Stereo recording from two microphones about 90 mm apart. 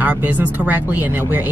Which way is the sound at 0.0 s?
15° right (ahead or behind).